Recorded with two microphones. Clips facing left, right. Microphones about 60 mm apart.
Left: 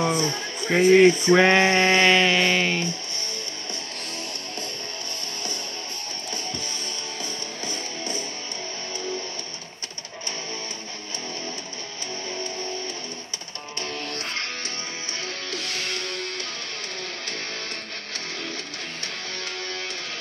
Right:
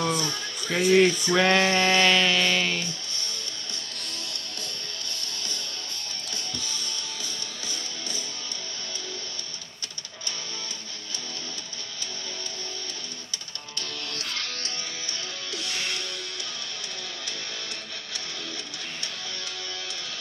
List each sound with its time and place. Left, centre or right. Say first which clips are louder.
0.0 s music: left 4 dB; left
13.7 s music: left 4 dB; left
15.5 s music: even; left